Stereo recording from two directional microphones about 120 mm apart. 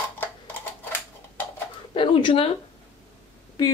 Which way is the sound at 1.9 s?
45° left (ahead or behind).